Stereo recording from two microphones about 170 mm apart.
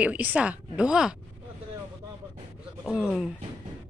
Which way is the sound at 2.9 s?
5° right (ahead or behind).